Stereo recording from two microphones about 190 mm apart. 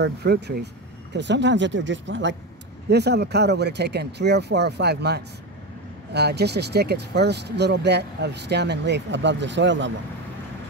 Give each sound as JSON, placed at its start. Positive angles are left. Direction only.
{"t": 0.0, "sound": "speech", "side_deg": -60}
{"t": 2.9, "sound": "speech", "side_deg": -60}